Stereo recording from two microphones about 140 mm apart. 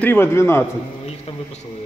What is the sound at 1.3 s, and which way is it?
Speech, 45° left (ahead or behind).